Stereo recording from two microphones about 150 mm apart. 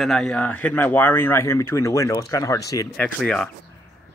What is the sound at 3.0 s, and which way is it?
Speech, 5° left (ahead or behind).